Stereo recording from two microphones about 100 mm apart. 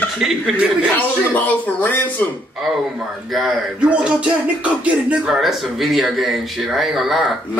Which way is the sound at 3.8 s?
10° right (ahead or behind).